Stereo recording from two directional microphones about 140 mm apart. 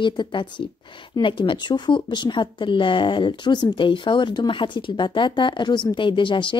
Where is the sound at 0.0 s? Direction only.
35° left (ahead or behind).